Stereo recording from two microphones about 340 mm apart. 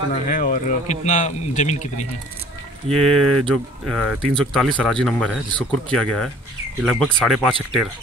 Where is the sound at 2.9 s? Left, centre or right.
Centre.